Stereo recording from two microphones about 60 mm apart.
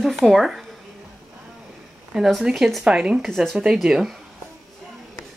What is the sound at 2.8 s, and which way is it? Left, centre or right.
Speech, centre.